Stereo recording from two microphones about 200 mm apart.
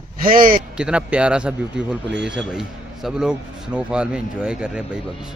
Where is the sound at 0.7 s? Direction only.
5° right (ahead or behind).